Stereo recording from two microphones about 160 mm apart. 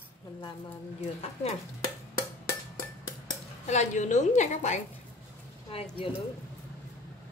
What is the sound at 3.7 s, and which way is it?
A woman's voice, 45° left (ahead or behind).